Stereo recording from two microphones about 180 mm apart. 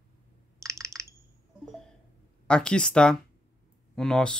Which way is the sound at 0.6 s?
15° right (ahead or behind).